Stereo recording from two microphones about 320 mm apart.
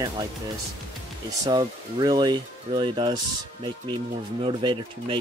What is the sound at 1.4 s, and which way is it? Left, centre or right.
Speech, centre.